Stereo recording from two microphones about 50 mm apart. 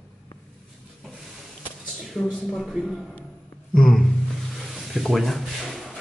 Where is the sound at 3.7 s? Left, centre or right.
Centre.